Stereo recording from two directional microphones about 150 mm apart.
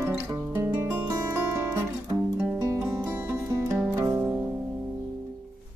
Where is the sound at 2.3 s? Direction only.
10° right (ahead or behind).